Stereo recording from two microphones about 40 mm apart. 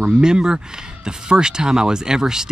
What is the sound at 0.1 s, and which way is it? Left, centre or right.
Speech, centre.